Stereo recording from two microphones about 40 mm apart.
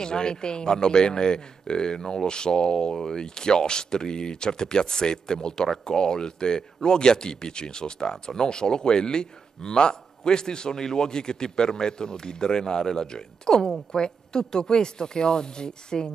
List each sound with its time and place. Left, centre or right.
0.0 s a man's voice: centre